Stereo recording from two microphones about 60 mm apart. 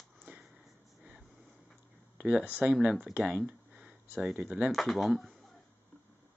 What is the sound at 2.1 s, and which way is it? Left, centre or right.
Speech, centre.